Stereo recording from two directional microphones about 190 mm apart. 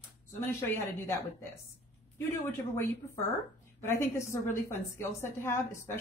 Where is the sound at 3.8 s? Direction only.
15° left (ahead or behind).